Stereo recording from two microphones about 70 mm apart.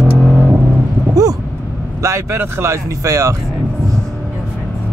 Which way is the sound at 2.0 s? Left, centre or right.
Right.